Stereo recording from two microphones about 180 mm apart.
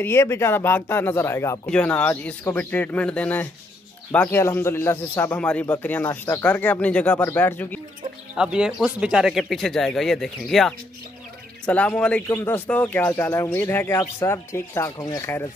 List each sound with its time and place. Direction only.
0.0 s speech: 15° left (ahead or behind)
8.4 s speech: 5° right (ahead or behind); by 15.4 s 15° left (ahead or behind)